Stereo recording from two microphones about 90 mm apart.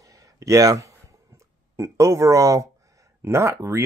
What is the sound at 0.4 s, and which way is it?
Speech, 35° right (ahead or behind).